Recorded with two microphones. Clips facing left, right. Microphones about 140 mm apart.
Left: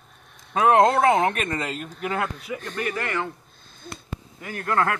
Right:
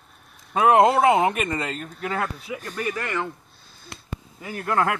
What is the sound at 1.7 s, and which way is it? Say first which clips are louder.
Speech: even; 10° left (ahead or behind).